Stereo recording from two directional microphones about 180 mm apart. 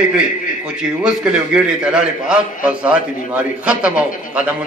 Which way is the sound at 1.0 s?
5° right (ahead or behind).